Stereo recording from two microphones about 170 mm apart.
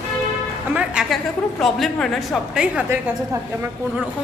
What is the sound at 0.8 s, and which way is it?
A woman's voice, 5° right (ahead or behind).